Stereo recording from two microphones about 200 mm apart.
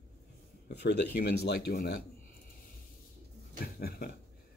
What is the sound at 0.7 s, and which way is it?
Speech, 55° left (ahead or behind).